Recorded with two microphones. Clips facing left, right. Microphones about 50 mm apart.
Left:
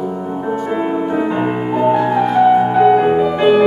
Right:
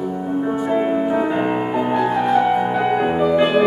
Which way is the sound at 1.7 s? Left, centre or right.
Centre.